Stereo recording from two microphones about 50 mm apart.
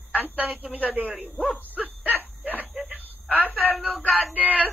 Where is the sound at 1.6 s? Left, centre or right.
Right.